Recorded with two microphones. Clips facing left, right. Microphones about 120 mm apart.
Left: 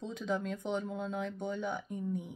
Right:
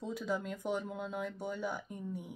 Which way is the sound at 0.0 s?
5° right (ahead or behind).